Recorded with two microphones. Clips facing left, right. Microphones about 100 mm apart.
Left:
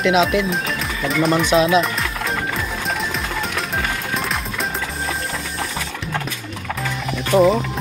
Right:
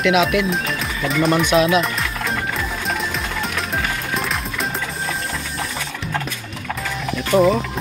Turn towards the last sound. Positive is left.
turn(degrees=0)  # may be behind; listen again after turning